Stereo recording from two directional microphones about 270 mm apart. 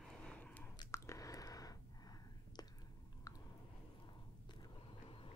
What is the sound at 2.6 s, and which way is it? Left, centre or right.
Whispering, centre.